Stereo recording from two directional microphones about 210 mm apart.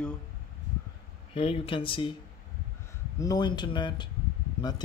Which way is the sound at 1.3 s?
25° left (ahead or behind).